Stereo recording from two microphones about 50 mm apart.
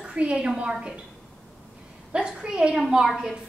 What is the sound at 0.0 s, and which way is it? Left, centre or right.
Speech, right.